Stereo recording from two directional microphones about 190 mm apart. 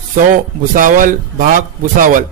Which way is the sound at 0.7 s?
45° right (ahead or behind).